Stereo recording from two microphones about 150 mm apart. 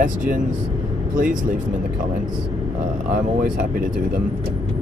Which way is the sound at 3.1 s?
75° right (ahead or behind).